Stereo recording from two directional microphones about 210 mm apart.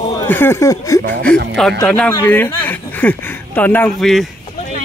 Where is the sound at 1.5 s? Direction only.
5° left (ahead or behind).